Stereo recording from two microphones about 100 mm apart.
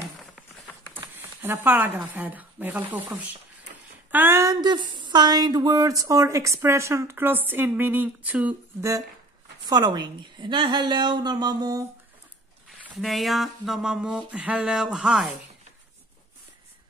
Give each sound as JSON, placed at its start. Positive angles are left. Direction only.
{"t": 1.1, "sound": "a sound", "side_deg": -20}
{"t": 2.0, "sound": "a woman's voice", "side_deg": -15}
{"t": 4.6, "sound": "a woman's voice", "side_deg": -50}
{"t": 9.7, "sound": "a woman's voice", "side_deg": -45}
{"t": 12.6, "sound": "speech", "side_deg": 0}